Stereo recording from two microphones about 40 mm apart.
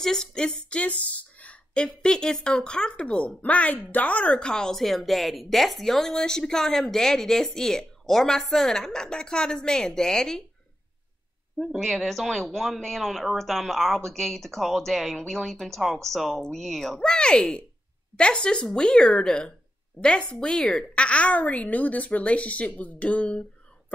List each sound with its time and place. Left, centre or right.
0.0 s speech: centre
0.3 s a woman's voice: left
2.0 s speech: centre; by 4.3 s left
4.3 s speech: left
4.7 s speech: centre
6.1 s speech: centre
11.8 s speech: centre
17.0 s speech: centre